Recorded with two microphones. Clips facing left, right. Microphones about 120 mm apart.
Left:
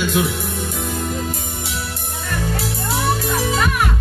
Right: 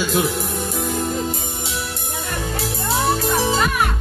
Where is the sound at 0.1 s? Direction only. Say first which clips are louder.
Even; 35° right (ahead or behind).